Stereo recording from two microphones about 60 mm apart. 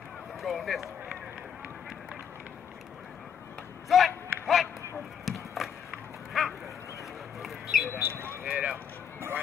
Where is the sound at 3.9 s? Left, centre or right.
Centre.